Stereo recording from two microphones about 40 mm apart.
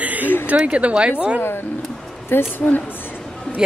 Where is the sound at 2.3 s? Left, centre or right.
Left.